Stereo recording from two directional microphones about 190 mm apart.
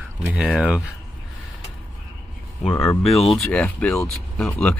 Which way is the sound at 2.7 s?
15° left (ahead or behind).